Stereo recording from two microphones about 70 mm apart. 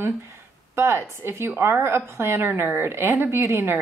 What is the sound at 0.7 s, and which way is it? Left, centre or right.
A woman's voice, right.